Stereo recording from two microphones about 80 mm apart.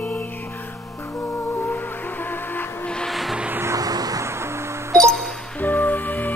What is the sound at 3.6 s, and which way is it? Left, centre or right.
Music, right.